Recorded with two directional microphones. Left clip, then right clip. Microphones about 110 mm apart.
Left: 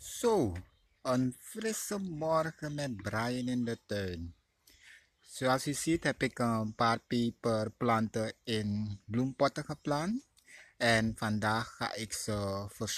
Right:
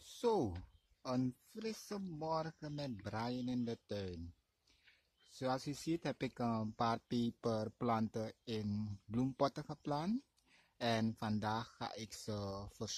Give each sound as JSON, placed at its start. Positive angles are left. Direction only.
{"t": 0.1, "sound": "speech", "side_deg": -15}
{"t": 1.5, "sound": "speech", "side_deg": -10}
{"t": 5.3, "sound": "speech", "side_deg": -10}
{"t": 8.6, "sound": "speech", "side_deg": -25}
{"t": 10.5, "sound": "a sound", "side_deg": -15}
{"t": 11.1, "sound": "speech", "side_deg": -15}